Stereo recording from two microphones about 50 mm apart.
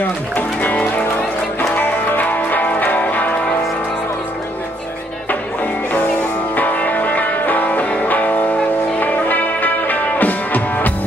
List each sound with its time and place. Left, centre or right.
1.8 s music: left
6.5 s music: left